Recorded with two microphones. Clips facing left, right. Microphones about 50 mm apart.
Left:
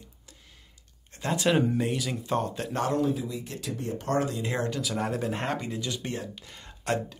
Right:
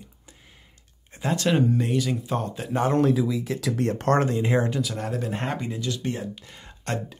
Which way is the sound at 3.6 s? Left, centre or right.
Right.